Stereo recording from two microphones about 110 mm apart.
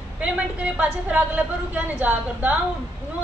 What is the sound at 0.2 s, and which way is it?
A woman's voice, 10° right (ahead or behind).